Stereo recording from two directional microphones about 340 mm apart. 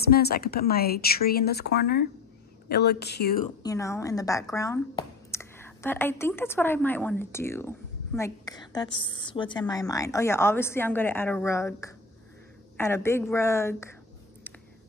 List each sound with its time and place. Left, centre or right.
0.0 s speech: left
3.6 s speech: centre